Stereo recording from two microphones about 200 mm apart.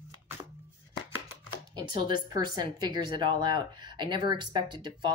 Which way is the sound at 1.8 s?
25° right (ahead or behind).